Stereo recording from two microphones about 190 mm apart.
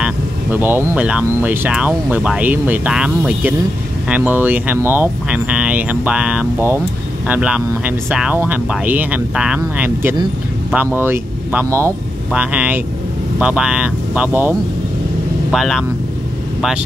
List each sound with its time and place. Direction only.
0.0 s speech: 10° right (ahead or behind)
15.5 s speech: centre (ahead or behind)